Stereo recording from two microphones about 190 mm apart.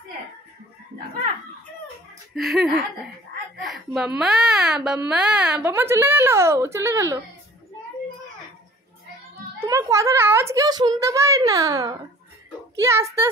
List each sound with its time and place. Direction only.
2.3 s speech: centre (ahead or behind)
9.6 s speech: 15° right (ahead or behind)